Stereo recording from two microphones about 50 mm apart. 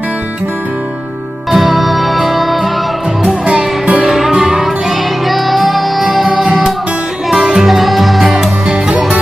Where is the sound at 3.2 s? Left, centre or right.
Centre.